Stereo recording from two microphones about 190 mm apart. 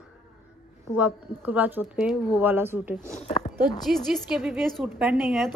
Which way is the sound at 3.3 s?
35° left (ahead or behind).